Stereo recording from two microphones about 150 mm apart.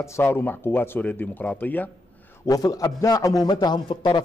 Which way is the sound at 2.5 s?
25° left (ahead or behind).